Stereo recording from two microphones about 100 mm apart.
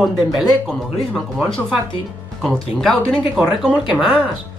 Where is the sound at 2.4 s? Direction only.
Centre (ahead or behind).